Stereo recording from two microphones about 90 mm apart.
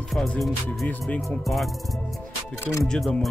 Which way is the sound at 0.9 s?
15° left (ahead or behind).